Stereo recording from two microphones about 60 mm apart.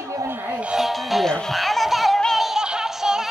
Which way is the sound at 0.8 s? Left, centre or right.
Centre.